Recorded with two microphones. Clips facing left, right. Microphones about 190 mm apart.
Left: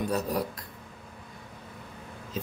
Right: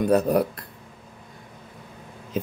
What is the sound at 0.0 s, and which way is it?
Speech, 60° right (ahead or behind).